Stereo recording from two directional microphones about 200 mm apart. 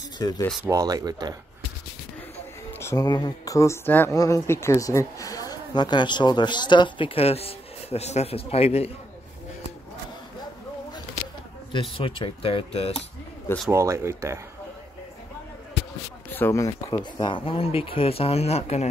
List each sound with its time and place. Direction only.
0.2 s speech: 20° left (ahead or behind)
0.7 s speech: 20° right (ahead or behind)
2.8 s speech: 15° left (ahead or behind)
11.7 s speech: 25° left (ahead or behind)
13.7 s speech: 15° right (ahead or behind)
16.3 s speech: 10° left (ahead or behind); by 18.9 s 30° left (ahead or behind)